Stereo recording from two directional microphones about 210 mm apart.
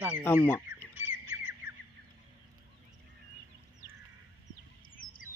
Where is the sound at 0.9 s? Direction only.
10° right (ahead or behind).